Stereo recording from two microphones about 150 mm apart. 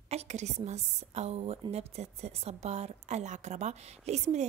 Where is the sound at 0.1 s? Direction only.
50° right (ahead or behind).